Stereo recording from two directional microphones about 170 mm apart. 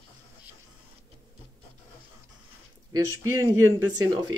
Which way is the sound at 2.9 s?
20° right (ahead or behind).